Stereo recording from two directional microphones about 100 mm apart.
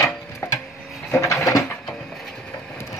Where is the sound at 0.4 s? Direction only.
30° left (ahead or behind).